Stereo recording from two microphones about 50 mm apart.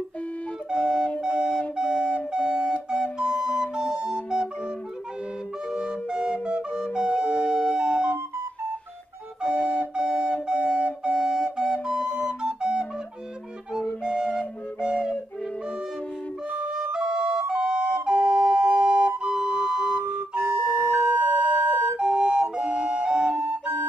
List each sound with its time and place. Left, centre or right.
0.7 s flute: centre
5.7 s flute: centre
9.4 s flute: centre
14.0 s flute: centre
16.5 s flute: right
19.3 s siren: centre
20.3 s flute: right